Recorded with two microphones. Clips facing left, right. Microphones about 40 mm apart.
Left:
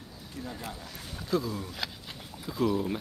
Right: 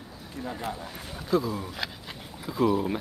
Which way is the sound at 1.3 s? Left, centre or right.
Centre.